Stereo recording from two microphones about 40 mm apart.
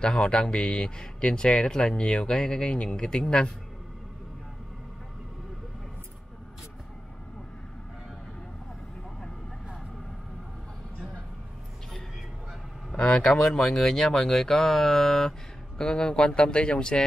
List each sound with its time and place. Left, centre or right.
0.0 s speech: left
13.2 s speech: centre